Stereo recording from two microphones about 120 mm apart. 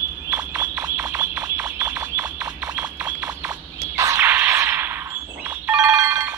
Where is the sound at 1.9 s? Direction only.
10° right (ahead or behind).